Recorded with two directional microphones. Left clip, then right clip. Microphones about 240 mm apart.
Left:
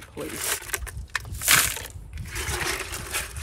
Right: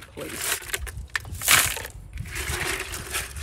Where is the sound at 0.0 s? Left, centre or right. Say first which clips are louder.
Even; centre.